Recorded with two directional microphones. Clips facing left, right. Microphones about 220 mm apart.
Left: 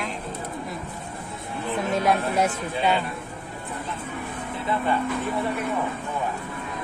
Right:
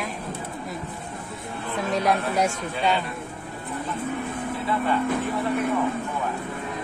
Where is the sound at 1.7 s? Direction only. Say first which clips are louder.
Left 1 dB; centre (ahead or behind).